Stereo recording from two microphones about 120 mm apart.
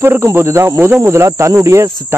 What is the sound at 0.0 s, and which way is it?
Speech, 20° right (ahead or behind).